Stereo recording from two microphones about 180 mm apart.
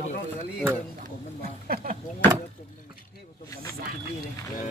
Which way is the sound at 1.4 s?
55° right (ahead or behind).